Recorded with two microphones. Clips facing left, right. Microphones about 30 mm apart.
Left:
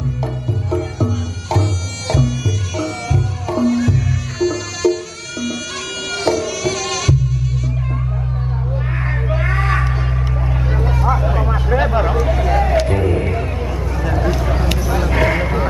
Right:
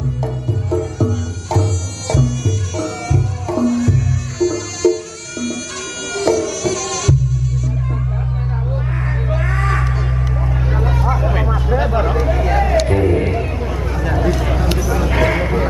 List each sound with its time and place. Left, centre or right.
0.2 s music: centre
6.1 s music: centre
9.0 s a sound: centre
9.9 s vehicle: centre
12.4 s vehicle: centre
12.8 s music: centre
13.9 s a sound: centre